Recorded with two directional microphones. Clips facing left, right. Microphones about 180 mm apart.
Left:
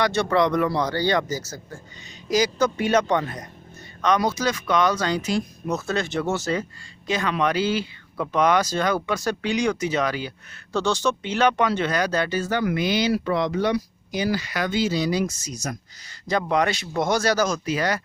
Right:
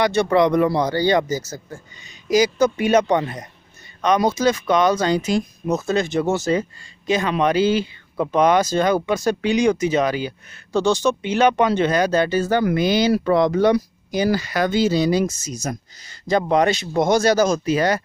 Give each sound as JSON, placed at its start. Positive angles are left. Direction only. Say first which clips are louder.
{"t": 0.0, "sound": "speech", "louder": "right 4 dB", "side_deg": -15}
{"t": 15.0, "sound": "speech", "louder": "right 5 dB", "side_deg": -25}